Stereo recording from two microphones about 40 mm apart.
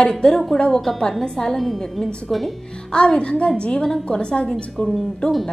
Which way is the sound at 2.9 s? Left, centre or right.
Left.